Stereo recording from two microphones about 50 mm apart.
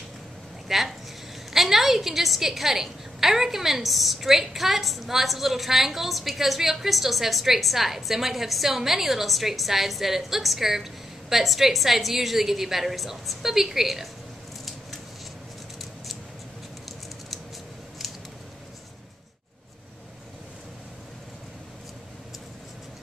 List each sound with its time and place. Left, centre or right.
0.7 s a woman's voice: centre